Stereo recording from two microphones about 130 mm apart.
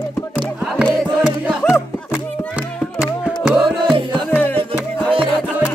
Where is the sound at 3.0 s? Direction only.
5° right (ahead or behind).